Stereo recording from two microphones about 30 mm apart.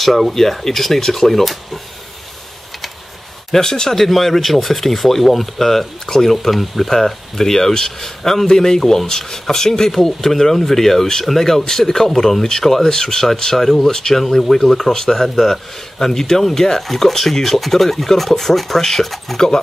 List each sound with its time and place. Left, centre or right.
0.0 s speech: centre
3.5 s speech: centre
3.9 s speech: centre
6.0 s speech: centre
6.3 s speech: centre
8.5 s speech: centre